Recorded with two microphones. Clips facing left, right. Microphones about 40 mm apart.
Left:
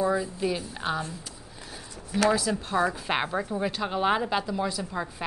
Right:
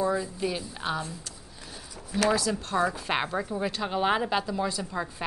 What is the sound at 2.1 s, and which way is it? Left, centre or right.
A woman's voice, centre.